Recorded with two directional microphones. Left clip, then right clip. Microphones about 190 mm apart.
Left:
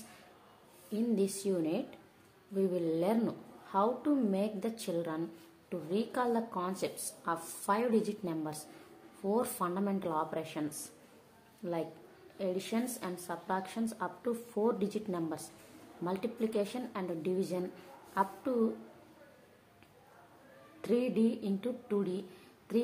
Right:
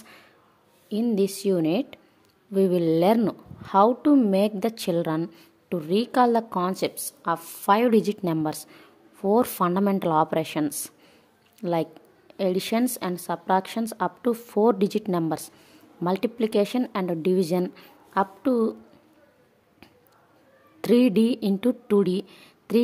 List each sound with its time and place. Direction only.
0.9 s a woman's voice: 50° right (ahead or behind)
20.8 s a woman's voice: 60° right (ahead or behind)